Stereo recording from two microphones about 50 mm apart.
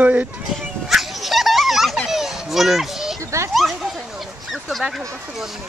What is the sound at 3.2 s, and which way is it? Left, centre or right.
Children playing, right.